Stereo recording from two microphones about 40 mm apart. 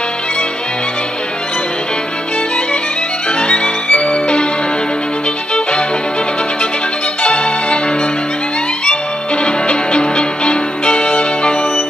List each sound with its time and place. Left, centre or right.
3.3 s music: left
5.5 s music: left
7.2 s music: left
8.8 s music: left